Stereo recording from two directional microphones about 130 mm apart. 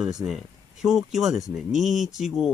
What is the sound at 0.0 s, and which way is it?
A man's voice, 5° right (ahead or behind).